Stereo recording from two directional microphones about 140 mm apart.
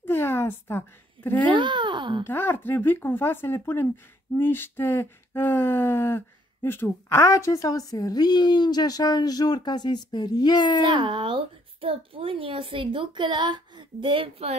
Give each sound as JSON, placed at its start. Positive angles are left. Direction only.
{"t": 0.0, "sound": "a sound", "side_deg": 15}
{"t": 1.5, "sound": "speech", "side_deg": -35}
{"t": 2.2, "sound": "speech", "side_deg": 15}
{"t": 10.8, "sound": "speech", "side_deg": -30}